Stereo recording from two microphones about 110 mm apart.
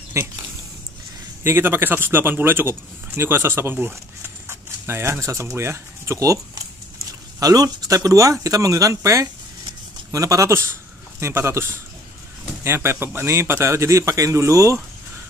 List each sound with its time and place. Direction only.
0.2 s a man's voice: 25° right (ahead or behind)
1.4 s a man's voice: 20° right (ahead or behind)
3.7 s a sound: 20° right (ahead or behind)
5.2 s a man's voice: 25° right (ahead or behind)